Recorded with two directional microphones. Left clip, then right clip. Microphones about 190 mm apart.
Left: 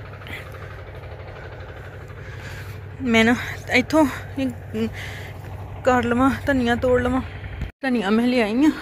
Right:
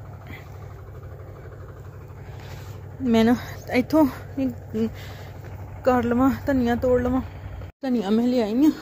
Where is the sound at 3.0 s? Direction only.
20° right (ahead or behind).